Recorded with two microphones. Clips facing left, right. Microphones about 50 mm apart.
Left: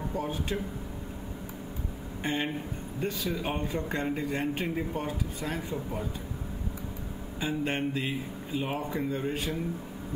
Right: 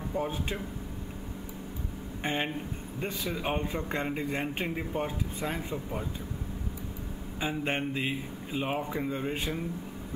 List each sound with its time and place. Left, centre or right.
0.1 s a man's voice: centre
2.2 s a man's voice: centre
7.3 s a man's voice: centre